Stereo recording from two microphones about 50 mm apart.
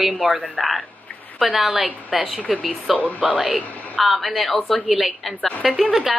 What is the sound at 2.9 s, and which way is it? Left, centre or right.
Speech, left.